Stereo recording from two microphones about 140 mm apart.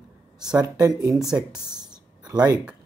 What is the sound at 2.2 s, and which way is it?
Speech, 25° right (ahead or behind).